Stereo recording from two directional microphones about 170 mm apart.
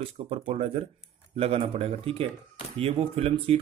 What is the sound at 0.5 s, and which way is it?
Speech, 35° right (ahead or behind).